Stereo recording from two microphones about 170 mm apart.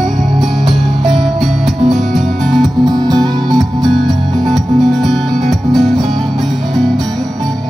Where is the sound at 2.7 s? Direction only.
25° right (ahead or behind).